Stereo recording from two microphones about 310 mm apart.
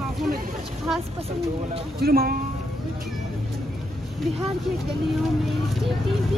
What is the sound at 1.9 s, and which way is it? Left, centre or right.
Speech, right.